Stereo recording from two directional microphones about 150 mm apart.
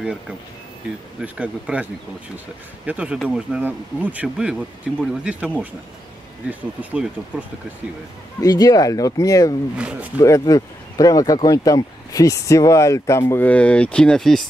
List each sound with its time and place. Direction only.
1.2 s speech: 10° right (ahead or behind)
2.9 s speech: 10° right (ahead or behind)
6.8 s speech: 10° right (ahead or behind)
8.4 s speech: 25° left (ahead or behind)
9.8 s speech: 5° right (ahead or behind)
10.1 s speech: 20° left (ahead or behind); by 14.4 s 5° left (ahead or behind)